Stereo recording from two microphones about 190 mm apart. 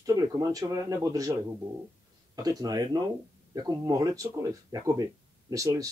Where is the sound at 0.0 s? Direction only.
20° right (ahead or behind).